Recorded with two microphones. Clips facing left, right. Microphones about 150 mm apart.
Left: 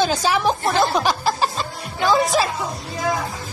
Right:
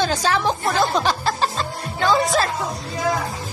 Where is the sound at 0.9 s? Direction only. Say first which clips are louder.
Left 1 dB; 5° left (ahead or behind).